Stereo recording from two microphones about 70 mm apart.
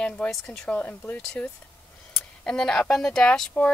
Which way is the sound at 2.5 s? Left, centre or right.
Centre.